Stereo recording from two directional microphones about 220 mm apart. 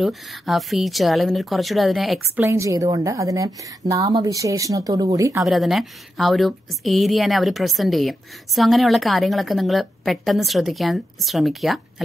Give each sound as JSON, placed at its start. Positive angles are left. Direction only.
{"t": 0.0, "sound": "a woman's voice", "side_deg": 0}
{"t": 2.3, "sound": "a woman's voice", "side_deg": -15}
{"t": 5.4, "sound": "a woman's voice", "side_deg": 0}